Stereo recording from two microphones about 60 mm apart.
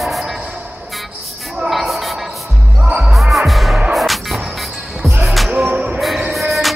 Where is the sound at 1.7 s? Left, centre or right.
Centre.